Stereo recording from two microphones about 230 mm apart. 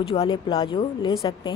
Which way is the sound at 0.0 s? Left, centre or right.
Left.